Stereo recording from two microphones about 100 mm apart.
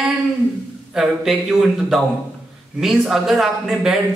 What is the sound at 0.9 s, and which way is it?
A man's voice, 5° right (ahead or behind).